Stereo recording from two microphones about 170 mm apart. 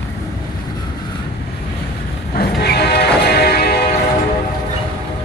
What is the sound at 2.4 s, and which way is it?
Music, 70° left (ahead or behind).